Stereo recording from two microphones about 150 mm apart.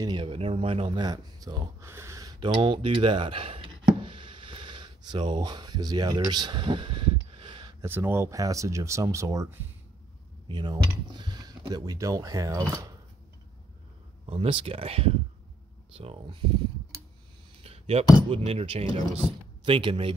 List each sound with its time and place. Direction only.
0.0 s speech: 30° right (ahead or behind)
1.9 s a sound: 20° right (ahead or behind)
7.8 s speech: 15° right (ahead or behind)
10.5 s speech: 30° right (ahead or behind)
14.2 s speech: 40° right (ahead or behind)
17.6 s a sound: 40° right (ahead or behind)
18.3 s speech: 40° right (ahead or behind)